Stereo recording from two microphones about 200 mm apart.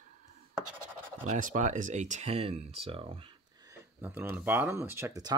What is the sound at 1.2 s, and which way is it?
Speech, 40° right (ahead or behind).